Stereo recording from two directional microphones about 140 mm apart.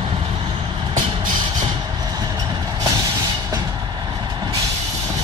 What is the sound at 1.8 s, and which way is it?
Vehicle, 30° right (ahead or behind).